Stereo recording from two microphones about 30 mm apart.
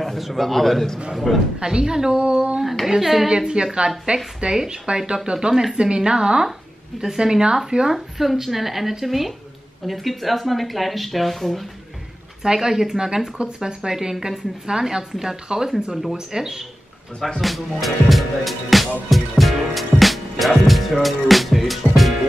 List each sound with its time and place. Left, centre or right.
0.2 s a man's voice: centre
1.6 s a woman's voice: right
2.1 s a sound: right
2.9 s speech: centre
3.3 s a woman's voice: right
5.5 s speech: centre
5.8 s a woman's voice: right
7.9 s speech: centre
12.5 s a woman's voice: centre
17.4 s music: centre